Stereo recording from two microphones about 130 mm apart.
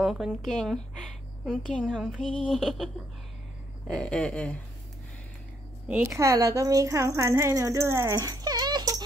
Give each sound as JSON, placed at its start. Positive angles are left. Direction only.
{"t": 0.0, "sound": "a woman's voice", "side_deg": 0}
{"t": 3.8, "sound": "a sound", "side_deg": 5}
{"t": 5.9, "sound": "a woman's voice", "side_deg": -10}
{"t": 6.1, "sound": "speech", "side_deg": -25}